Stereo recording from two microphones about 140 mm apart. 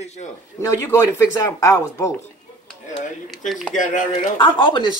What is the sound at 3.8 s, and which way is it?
Speech, 65° left (ahead or behind).